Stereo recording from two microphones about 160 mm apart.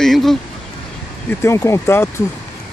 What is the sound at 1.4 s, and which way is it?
Speech, 20° left (ahead or behind).